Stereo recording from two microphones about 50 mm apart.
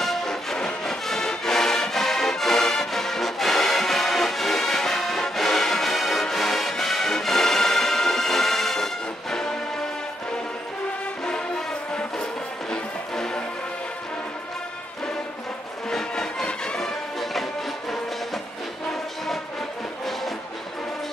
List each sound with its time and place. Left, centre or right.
0.0 s music: centre
11.2 s music: centre
15.9 s music: centre